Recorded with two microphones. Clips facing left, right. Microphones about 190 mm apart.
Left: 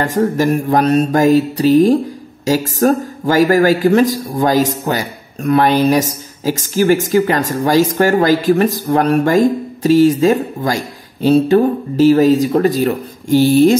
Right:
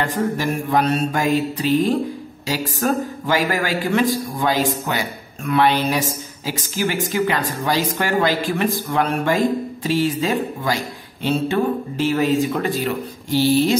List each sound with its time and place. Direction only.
0.0 s a man's voice: 40° left (ahead or behind)